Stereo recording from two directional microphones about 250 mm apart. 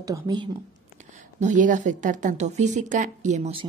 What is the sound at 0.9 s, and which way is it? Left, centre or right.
A woman's voice, right.